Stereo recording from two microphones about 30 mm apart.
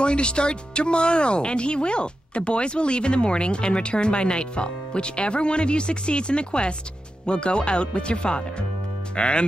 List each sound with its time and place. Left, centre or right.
0.0 s speech: left